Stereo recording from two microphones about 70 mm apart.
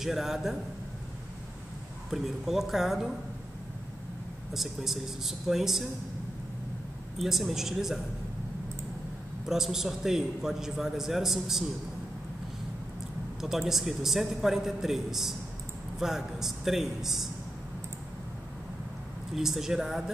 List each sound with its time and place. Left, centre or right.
0.0 s a man's voice: centre
2.0 s a man's voice: centre
4.6 s a man's voice: centre
7.2 s a man's voice: centre
9.5 s a man's voice: centre
13.4 s a man's voice: centre
19.3 s a man's voice: centre